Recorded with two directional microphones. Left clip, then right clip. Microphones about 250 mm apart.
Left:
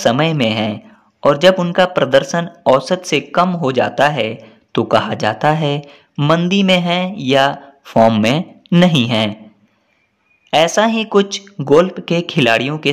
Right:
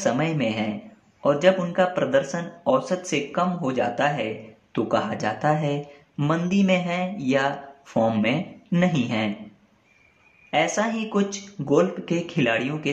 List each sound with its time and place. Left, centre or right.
0.0 s speech: left
10.5 s speech: left